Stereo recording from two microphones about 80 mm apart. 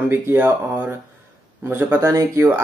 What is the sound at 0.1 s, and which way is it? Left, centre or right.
Speech, right.